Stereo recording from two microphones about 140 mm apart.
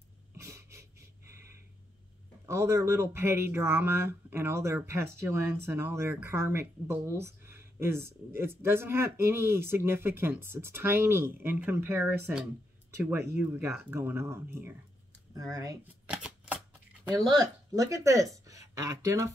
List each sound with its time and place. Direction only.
0.4 s a sound: 20° right (ahead or behind)
2.4 s speech: 20° right (ahead or behind)
16.1 s shuffling cards: 10° right (ahead or behind)
17.4 s speech: 25° right (ahead or behind)